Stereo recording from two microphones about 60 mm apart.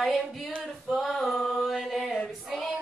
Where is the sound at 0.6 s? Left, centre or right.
Centre.